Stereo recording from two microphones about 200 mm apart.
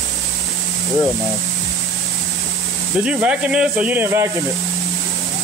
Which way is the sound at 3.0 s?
5° right (ahead or behind).